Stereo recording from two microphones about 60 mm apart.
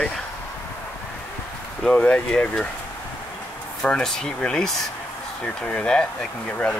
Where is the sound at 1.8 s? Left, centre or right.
Centre.